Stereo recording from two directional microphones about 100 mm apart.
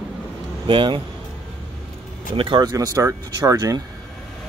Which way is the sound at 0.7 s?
55° right (ahead or behind).